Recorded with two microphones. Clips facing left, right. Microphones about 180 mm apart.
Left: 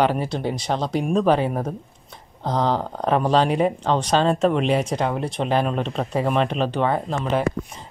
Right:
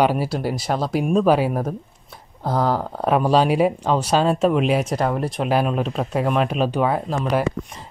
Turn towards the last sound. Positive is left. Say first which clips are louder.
# right 1 dB
turn(degrees=-5)  # may be behind; listen again after turning